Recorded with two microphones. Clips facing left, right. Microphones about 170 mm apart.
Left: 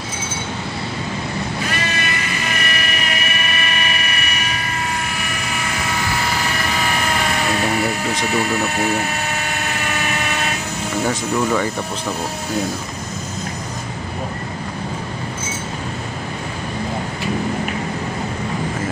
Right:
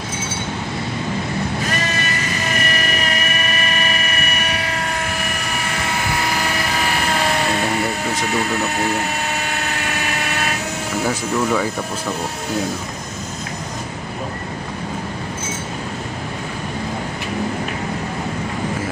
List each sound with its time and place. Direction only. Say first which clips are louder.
2.7 s vehicle: right 2 dB; 40° right (ahead or behind)
11.1 s speech: even; 5° right (ahead or behind)